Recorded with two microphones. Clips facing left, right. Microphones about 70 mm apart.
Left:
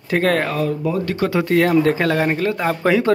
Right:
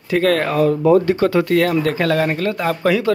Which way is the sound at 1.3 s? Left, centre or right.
Centre.